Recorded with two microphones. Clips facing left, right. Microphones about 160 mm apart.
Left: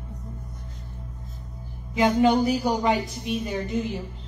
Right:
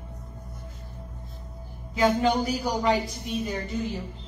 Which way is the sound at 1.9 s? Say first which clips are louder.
Left 3 dB; 20° left (ahead or behind).